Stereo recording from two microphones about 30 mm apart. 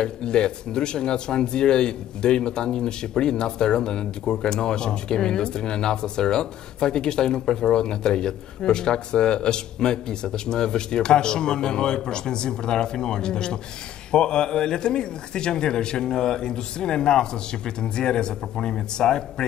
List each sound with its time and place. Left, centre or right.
0.0 s speech: left